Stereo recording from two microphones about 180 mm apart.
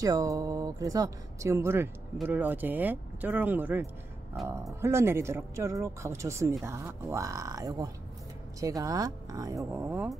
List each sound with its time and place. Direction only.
0.0 s speech: 20° right (ahead or behind)
4.4 s speech: centre (ahead or behind)
4.8 s speech: 15° right (ahead or behind)